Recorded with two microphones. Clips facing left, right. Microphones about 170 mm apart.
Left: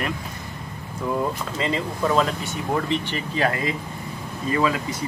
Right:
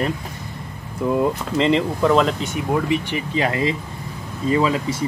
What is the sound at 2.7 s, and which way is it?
Speech, 10° right (ahead or behind).